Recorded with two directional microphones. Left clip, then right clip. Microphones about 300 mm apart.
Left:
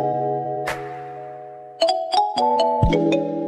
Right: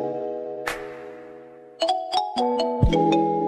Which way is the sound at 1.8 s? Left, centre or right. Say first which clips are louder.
Left 4 dB; centre.